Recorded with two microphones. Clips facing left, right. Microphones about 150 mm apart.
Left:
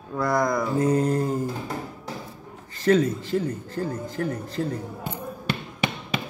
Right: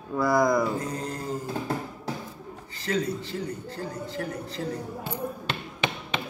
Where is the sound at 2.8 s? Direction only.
50° left (ahead or behind).